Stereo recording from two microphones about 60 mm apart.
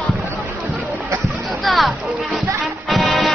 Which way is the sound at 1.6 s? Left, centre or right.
Centre.